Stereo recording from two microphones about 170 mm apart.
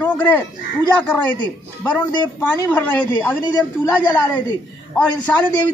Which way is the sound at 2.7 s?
10° left (ahead or behind).